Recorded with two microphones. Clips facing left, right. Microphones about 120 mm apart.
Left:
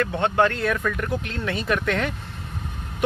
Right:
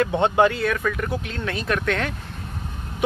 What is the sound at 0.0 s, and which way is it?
Speech, 15° right (ahead or behind).